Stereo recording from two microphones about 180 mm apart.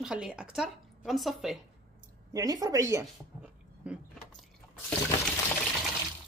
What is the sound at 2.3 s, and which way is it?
Speech, 20° right (ahead or behind).